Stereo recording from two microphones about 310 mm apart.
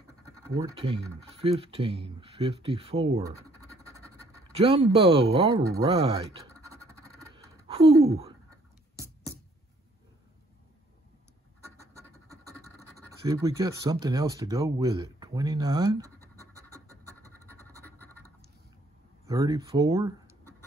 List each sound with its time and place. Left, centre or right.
0.6 s speech: centre
4.5 s speech: centre
7.6 s a sound: centre
13.3 s speech: centre
17.5 s a sound: centre
19.2 s speech: centre